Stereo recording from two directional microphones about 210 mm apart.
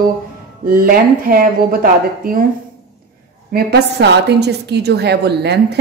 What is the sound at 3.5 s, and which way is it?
Speech, 50° right (ahead or behind).